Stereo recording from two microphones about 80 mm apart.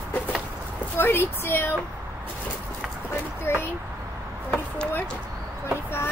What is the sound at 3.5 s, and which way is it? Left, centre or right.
Speech, left.